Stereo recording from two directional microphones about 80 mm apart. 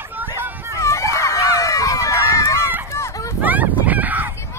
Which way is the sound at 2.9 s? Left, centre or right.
Left.